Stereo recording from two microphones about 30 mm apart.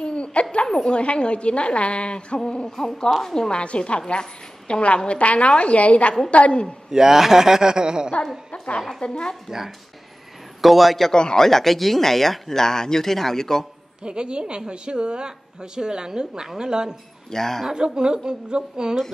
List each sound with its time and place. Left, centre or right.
0.0 s a sound: left
0.8 s a woman's voice: left
2.7 s speech: centre
3.3 s a man's voice: left
3.6 s a woman's voice: left
6.9 s a man's voice: centre
8.5 s a woman's voice: left
10.6 s a man's voice: centre
11.1 s a man's voice: left
11.4 s speech: centre
14.0 s a woman's voice: right
17.3 s speech: centre
17.7 s a woman's voice: right